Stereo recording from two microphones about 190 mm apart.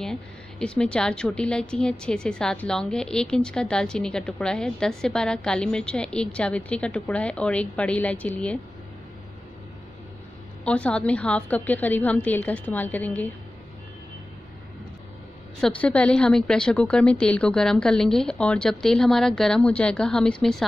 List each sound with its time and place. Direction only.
0.0 s a woman's voice: 5° left (ahead or behind)
10.6 s a woman's voice: 5° left (ahead or behind)
15.6 s a woman's voice: 5° left (ahead or behind)